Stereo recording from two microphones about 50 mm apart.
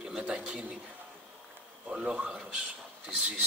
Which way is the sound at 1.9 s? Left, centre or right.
Centre.